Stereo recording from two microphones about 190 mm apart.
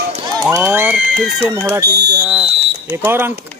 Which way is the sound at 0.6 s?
5° right (ahead or behind).